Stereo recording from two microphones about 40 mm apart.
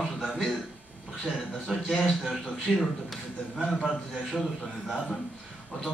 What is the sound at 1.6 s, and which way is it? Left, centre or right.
A man's voice, centre.